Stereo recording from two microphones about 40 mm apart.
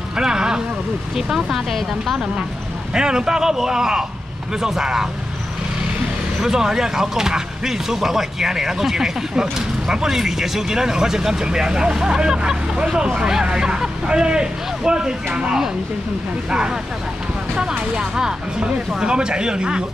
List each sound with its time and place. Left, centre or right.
0.2 s a sound: centre
1.1 s speech: centre
2.9 s speech: centre
6.4 s speech: centre